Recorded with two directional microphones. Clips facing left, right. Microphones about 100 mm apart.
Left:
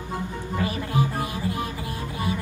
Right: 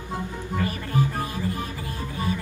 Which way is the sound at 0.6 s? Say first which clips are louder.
Left 1 dB; 15° left (ahead or behind).